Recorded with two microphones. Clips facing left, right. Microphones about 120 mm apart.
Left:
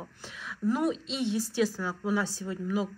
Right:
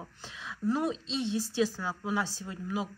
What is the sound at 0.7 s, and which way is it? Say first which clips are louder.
A woman's voice: left 2 dB; 25° right (ahead or behind).